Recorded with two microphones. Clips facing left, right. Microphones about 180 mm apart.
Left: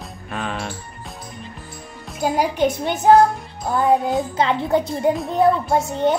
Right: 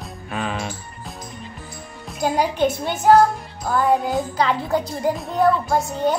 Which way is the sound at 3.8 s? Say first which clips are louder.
Left 2 dB; centre (ahead or behind).